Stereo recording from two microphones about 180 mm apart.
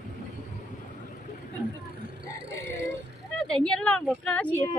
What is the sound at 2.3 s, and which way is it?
Music, 70° right (ahead or behind).